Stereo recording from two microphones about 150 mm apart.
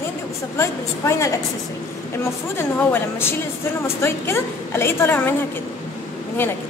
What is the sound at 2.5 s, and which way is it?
A woman's voice, 15° left (ahead or behind).